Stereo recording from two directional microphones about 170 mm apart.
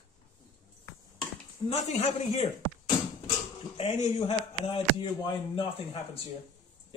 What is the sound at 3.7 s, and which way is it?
Speech, 35° left (ahead or behind).